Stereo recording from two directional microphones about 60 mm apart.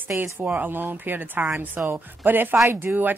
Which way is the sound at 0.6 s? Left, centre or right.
Right.